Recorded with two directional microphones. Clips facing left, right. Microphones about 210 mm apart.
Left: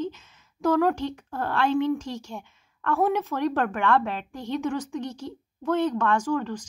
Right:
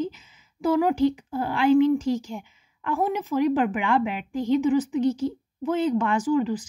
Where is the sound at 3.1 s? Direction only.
5° right (ahead or behind).